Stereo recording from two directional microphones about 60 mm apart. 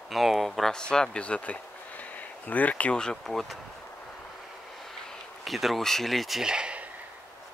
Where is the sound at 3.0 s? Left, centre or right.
Centre.